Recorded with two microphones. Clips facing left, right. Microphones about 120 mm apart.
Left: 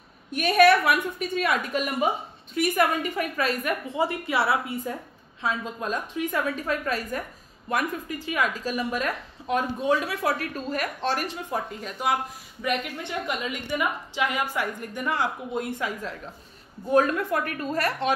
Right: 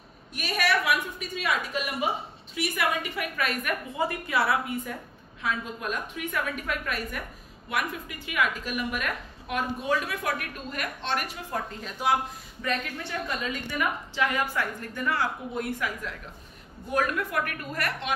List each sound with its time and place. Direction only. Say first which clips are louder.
0.3 s a woman's voice: left 9 dB; 55° left (ahead or behind); by 11.3 s 35° left (ahead or behind)
11.5 s speech: even; 5° left (ahead or behind)
12.6 s a woman's voice: left 3 dB; 15° left (ahead or behind); by 18.1 s 30° left (ahead or behind)